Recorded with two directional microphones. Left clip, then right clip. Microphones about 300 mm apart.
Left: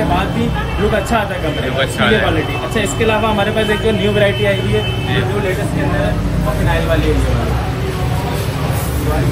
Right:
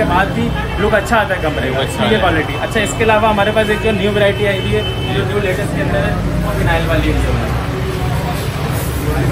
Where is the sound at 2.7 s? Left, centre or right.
Centre.